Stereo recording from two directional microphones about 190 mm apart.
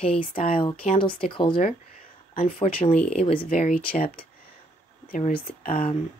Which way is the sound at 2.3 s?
40° left (ahead or behind).